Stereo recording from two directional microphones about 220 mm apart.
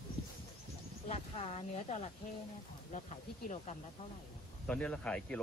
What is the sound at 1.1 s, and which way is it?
Speech, 30° left (ahead or behind).